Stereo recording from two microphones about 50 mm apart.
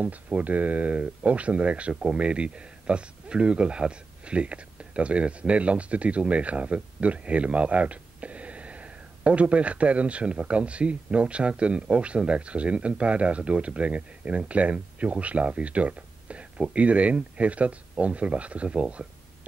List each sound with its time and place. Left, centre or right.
0.0 s speech: right